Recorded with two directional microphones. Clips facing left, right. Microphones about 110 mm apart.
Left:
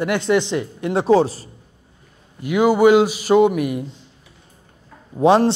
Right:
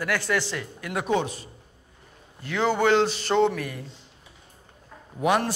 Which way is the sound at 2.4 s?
10° left (ahead or behind).